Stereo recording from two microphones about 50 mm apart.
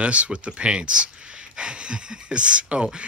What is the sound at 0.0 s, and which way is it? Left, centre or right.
Speech, right.